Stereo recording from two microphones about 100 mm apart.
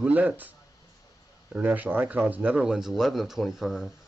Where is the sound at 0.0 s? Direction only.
15° right (ahead or behind).